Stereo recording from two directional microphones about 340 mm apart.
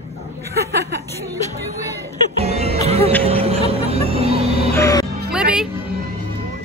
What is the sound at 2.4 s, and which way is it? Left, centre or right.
Music, centre.